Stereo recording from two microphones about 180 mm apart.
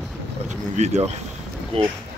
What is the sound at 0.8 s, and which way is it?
Speech, 40° right (ahead or behind).